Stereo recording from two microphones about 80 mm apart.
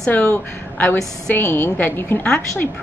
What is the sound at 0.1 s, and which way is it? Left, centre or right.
Speech, left.